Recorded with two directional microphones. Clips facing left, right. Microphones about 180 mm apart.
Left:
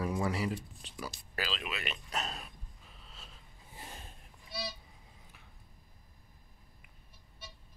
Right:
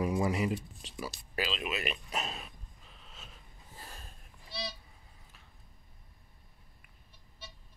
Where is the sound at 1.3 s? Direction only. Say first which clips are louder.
Right 4 dB; 15° right (ahead or behind).